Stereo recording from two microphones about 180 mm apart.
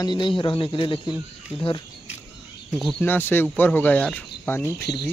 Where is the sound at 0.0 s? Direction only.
25° left (ahead or behind).